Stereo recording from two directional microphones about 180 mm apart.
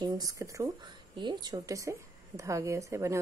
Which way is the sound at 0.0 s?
20° right (ahead or behind).